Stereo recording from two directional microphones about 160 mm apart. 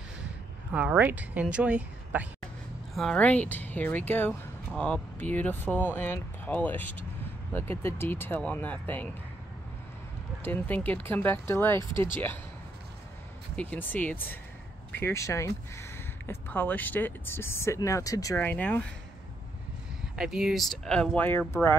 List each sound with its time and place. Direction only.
0.7 s speech: 10° right (ahead or behind)
2.9 s speech: 5° left (ahead or behind)
10.4 s speech: 10° left (ahead or behind)
13.6 s speech: 10° left (ahead or behind)
20.2 s speech: 5° right (ahead or behind); by 21.7 s 15° left (ahead or behind)